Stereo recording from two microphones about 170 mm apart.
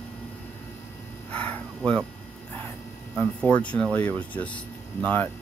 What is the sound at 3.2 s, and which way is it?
Speech, 5° left (ahead or behind).